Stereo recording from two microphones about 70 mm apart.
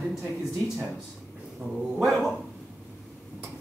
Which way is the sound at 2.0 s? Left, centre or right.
Centre.